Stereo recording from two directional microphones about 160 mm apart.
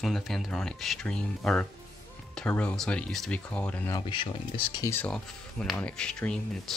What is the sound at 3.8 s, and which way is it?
Speech, 25° left (ahead or behind).